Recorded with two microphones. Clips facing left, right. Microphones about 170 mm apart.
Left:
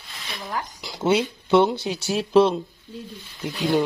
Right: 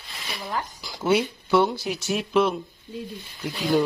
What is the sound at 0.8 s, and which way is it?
Speech, 20° left (ahead or behind).